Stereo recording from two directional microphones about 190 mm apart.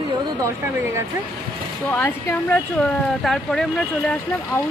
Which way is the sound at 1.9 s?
10° left (ahead or behind).